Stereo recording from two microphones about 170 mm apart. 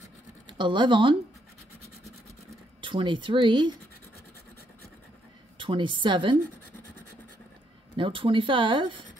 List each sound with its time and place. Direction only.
0.5 s speech: 30° right (ahead or behind)
2.8 s speech: 30° right (ahead or behind)
5.6 s speech: 30° right (ahead or behind)
7.9 s speech: 30° right (ahead or behind)